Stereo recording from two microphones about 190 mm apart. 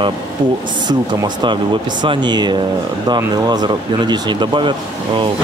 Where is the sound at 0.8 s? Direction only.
25° right (ahead or behind).